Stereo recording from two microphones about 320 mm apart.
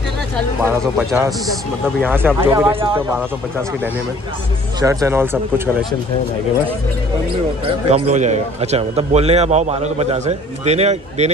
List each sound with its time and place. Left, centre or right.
0.6 s speech: centre
4.7 s speech: centre
7.6 s a man's voice: right